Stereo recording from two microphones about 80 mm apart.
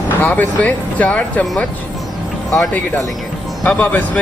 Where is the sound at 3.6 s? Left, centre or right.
Centre.